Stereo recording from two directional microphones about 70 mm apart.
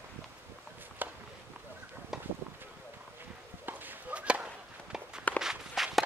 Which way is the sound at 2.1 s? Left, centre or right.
Centre.